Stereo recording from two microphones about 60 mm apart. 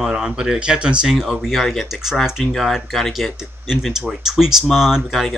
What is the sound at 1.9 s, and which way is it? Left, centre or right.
Speech, centre.